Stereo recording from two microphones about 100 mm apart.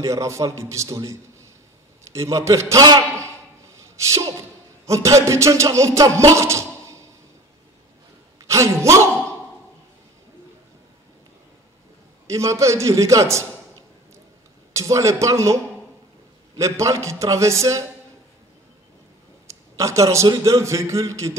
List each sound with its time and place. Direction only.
0.0 s a man's voice: 30° right (ahead or behind)
8.4 s a man's voice: 30° right (ahead or behind)
12.3 s a man's voice: 30° right (ahead or behind)
14.7 s a man's voice: 30° right (ahead or behind)
19.4 s a man's voice: 30° right (ahead or behind)